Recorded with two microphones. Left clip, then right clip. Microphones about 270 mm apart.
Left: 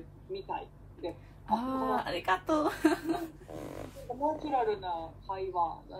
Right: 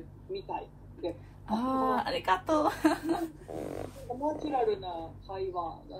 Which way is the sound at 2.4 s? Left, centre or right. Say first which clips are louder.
Right 2 dB; centre.